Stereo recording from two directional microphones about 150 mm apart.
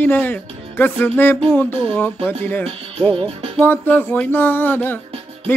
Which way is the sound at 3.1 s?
40° right (ahead or behind).